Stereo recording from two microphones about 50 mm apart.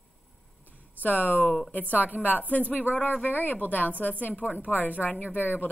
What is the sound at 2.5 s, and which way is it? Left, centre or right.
A woman's voice, left.